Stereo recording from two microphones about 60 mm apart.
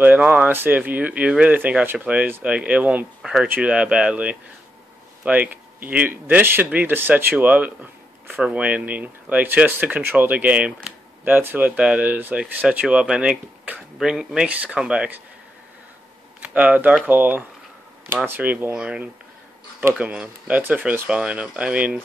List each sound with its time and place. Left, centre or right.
0.0 s speech: right
3.2 s speech: centre
3.6 s speech: centre
11.3 s speech: right; by 14.5 s centre
14.5 s speech: right
16.3 s speech: right
18.1 s speech: right
18.4 s speech: right
20.1 s speech: right